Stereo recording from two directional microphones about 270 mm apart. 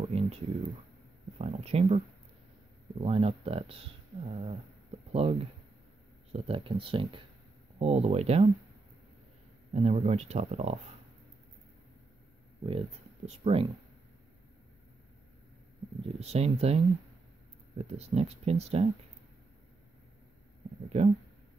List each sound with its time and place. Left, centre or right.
0.0 s a sound: right
1.4 s speech: right
5.1 s speech: right
9.8 s speech: right
12.6 s speech: right
16.0 s speech: right
20.9 s speech: right